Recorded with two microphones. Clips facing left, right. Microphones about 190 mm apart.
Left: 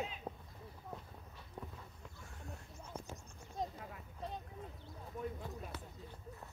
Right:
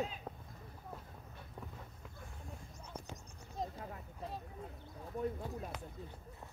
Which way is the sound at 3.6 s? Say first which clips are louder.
Even; centre (ahead or behind).